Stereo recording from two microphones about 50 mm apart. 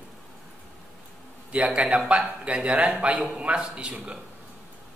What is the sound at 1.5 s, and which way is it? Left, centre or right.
A man's voice, right.